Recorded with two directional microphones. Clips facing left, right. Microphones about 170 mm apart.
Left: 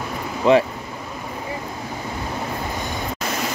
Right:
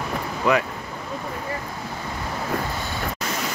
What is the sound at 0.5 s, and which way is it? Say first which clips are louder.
Speech: left 6 dB; 25° left (ahead or behind).